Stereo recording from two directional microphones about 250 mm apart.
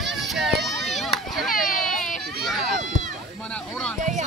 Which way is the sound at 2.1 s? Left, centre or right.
Centre.